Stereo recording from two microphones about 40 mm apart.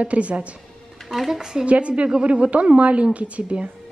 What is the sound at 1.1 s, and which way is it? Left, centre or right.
Speech, centre.